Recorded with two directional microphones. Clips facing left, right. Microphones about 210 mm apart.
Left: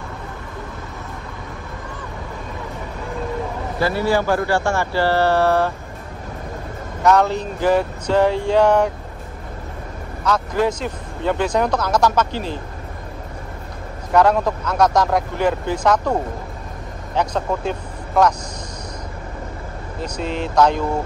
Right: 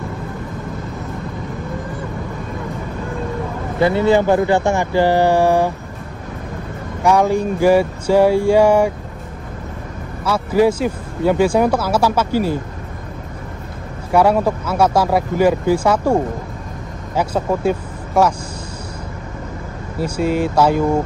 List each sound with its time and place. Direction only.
3.8 s speech: 20° right (ahead or behind)
7.0 s speech: 10° right (ahead or behind)
10.2 s speech: 10° right (ahead or behind)
14.1 s speech: 10° right (ahead or behind)
20.0 s speech: 10° right (ahead or behind)